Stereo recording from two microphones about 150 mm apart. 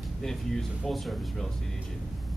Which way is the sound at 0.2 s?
Centre (ahead or behind).